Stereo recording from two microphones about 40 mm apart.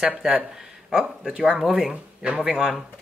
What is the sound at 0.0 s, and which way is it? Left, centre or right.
Speech, centre.